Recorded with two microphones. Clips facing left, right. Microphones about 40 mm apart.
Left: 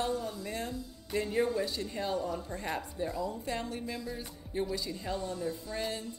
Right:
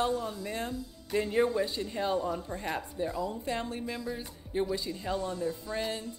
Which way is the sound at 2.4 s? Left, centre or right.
Centre.